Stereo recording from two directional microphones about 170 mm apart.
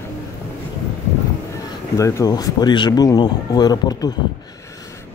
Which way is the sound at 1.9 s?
20° left (ahead or behind).